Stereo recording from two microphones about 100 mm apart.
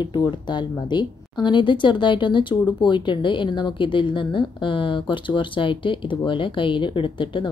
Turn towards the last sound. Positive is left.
turn(degrees=55)  # may be behind; listen again after turning